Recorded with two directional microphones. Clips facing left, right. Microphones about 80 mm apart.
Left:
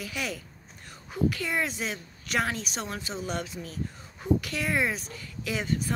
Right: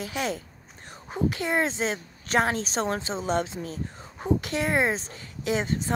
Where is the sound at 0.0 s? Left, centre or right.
Right.